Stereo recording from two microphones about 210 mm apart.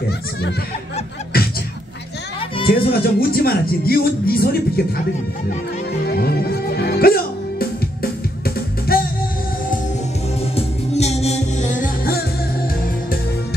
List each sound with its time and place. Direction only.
1.3 s music: 45° left (ahead or behind)
2.7 s speech: 45° left (ahead or behind)
6.0 s music: 45° left (ahead or behind)
10.4 s music: 30° left (ahead or behind)